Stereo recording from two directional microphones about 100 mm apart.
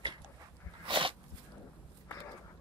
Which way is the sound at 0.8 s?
55° right (ahead or behind).